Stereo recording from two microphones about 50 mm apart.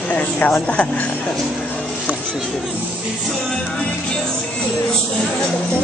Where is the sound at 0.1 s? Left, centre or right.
Left.